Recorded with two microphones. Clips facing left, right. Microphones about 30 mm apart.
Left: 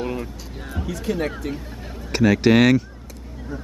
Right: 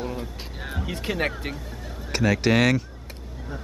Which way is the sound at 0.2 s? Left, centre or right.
Right.